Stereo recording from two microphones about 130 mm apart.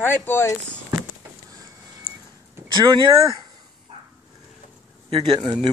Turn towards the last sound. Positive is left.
turn(degrees=-35)  # may be behind; listen again after turning